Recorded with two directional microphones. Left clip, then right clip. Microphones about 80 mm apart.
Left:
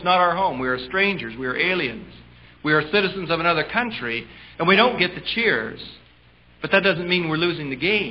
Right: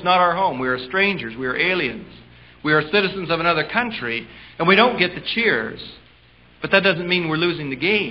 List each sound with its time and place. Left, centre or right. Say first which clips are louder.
0.0 s a man's voice: right 2 dB; right